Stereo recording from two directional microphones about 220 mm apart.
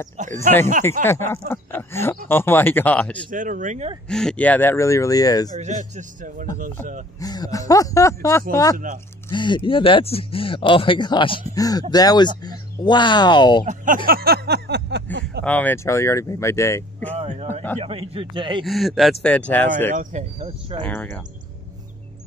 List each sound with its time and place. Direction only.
0.2 s speech: 35° right (ahead or behind)
1.5 s speech: 10° left (ahead or behind)
3.3 s speech: 35° right (ahead or behind)
4.1 s speech: 5° left (ahead or behind)
5.6 s speech: 35° right (ahead or behind)
7.2 s speech: 15° left (ahead or behind)
8.7 s speech: 35° right (ahead or behind)
9.3 s speech: 20° left (ahead or behind)
14.0 s a sound: 45° right (ahead or behind)
15.4 s speech: 5° left (ahead or behind)
17.1 s a man's voice: 25° right (ahead or behind)
18.6 s speech: centre (ahead or behind)
19.9 s speech: 35° right (ahead or behind)
20.8 s speech: 10° left (ahead or behind)